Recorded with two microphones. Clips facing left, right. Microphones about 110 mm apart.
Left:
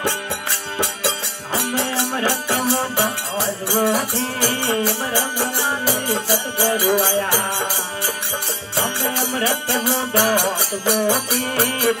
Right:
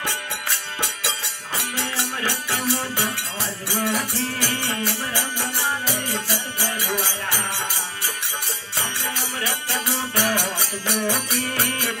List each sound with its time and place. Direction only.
0.7 s music: 35° left (ahead or behind)
8.7 s music: 35° left (ahead or behind)